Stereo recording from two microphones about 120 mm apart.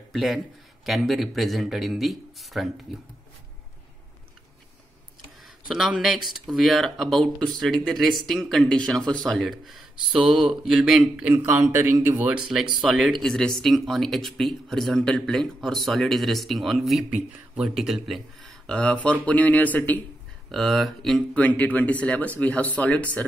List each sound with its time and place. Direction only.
0.1 s a man's voice: centre (ahead or behind)
5.7 s speech: 5° right (ahead or behind)
11.2 s speech: 20° right (ahead or behind)
12.8 s speech: centre (ahead or behind)
20.5 s speech: centre (ahead or behind)